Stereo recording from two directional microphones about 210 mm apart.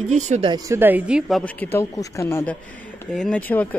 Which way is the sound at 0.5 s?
10° right (ahead or behind).